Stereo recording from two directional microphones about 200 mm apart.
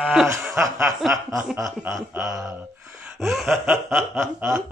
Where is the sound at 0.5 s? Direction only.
15° right (ahead or behind).